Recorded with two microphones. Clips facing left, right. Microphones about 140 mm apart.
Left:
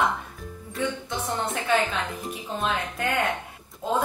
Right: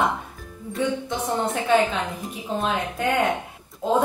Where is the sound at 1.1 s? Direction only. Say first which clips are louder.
Right 4 dB; 15° right (ahead or behind).